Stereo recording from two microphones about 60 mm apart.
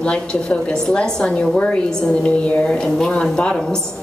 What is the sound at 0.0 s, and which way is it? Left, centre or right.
A woman's voice, centre.